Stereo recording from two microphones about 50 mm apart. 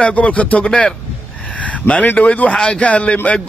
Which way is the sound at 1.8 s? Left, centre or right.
Left.